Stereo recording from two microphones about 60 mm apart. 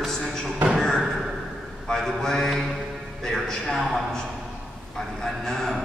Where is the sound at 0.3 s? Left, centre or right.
Centre.